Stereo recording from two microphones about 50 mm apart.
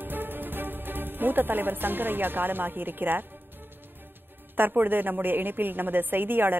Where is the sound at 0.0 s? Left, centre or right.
Right.